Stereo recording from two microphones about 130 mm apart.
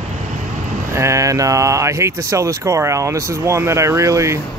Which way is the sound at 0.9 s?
25° right (ahead or behind).